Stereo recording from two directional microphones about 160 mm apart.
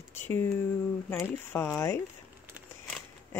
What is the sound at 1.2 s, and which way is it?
Speech, 15° left (ahead or behind).